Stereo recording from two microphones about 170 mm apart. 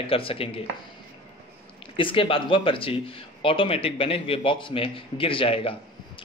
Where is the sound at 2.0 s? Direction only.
30° left (ahead or behind).